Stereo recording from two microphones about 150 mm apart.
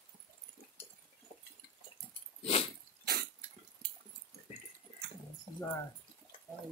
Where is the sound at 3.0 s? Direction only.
90° right.